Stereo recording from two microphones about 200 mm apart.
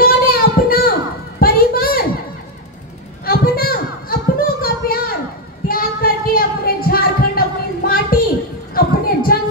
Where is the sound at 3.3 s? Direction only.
50° left (ahead or behind).